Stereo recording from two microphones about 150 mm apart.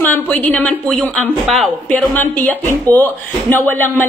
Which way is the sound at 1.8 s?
10° left (ahead or behind).